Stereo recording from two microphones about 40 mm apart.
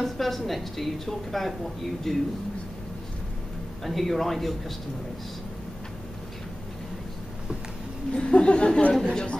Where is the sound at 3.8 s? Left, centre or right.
Centre.